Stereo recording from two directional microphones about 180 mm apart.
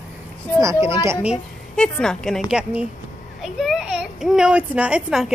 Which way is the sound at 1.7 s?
5° left (ahead or behind).